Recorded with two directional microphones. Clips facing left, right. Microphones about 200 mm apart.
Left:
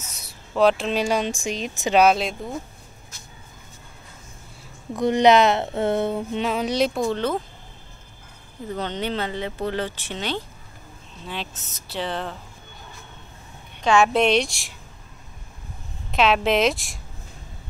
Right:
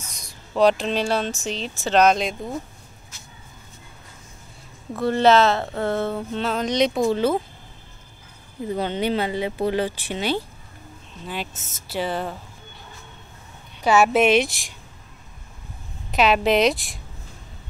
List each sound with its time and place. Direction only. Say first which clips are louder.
0.6 s speech: even; centre (ahead or behind)
4.9 s speech: left 1 dB; 15° left (ahead or behind); by 7.3 s 5° right (ahead or behind)
8.6 s speech: right 4 dB; 10° right (ahead or behind)
11.9 s a woman's voice: right 2 dB; 5° right (ahead or behind)
13.8 s a woman's voice: right 1 dB; 5° right (ahead or behind)
16.1 s a woman's voice: right 1 dB; centre (ahead or behind)